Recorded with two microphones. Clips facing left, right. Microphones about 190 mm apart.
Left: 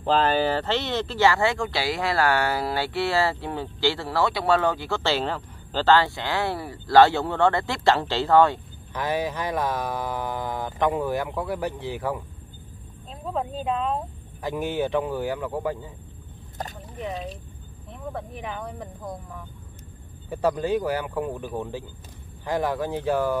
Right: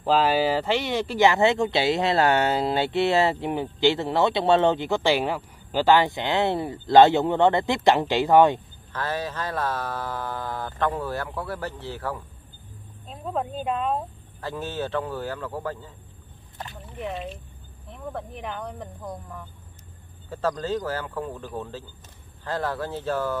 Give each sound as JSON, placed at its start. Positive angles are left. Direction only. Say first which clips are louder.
{"t": 0.0, "sound": "speech", "louder": "right 1 dB", "side_deg": -5}
{"t": 8.9, "sound": "speech", "louder": "left 3 dB", "side_deg": 15}
{"t": 13.1, "sound": "speech", "louder": "even", "side_deg": 0}
{"t": 14.4, "sound": "speech", "louder": "left 4 dB", "side_deg": 15}
{"t": 16.6, "sound": "a sound", "louder": "left 4 dB", "side_deg": 40}
{"t": 17.9, "sound": "speech", "louder": "even", "side_deg": 0}
{"t": 20.2, "sound": "speech", "louder": "left 3 dB", "side_deg": 15}